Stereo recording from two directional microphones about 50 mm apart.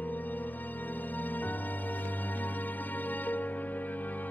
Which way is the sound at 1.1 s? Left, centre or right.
Left.